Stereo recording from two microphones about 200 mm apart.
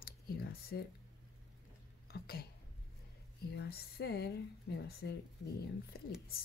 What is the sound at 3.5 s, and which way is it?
Speech, 50° left (ahead or behind).